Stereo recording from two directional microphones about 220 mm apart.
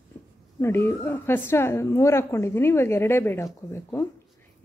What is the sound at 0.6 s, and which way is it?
Speech, 10° left (ahead or behind).